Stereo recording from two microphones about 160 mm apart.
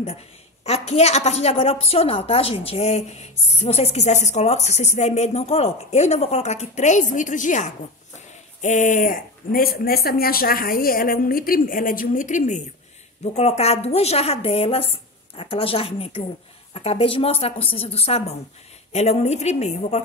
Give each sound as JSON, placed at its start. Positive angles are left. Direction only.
{"t": 0.7, "sound": "a woman's voice", "side_deg": 40}